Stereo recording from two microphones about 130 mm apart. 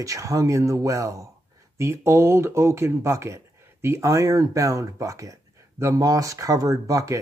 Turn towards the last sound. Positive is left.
turn(degrees=-25)  # may be behind; listen again after turning